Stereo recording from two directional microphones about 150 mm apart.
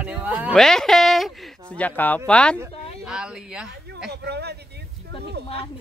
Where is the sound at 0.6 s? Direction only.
5° left (ahead or behind).